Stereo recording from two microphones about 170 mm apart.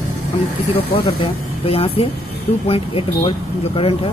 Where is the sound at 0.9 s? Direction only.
30° left (ahead or behind).